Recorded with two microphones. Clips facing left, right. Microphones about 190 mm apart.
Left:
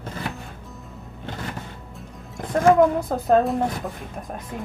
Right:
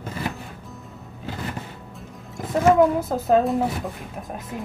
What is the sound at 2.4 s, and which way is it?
Speech, centre (ahead or behind).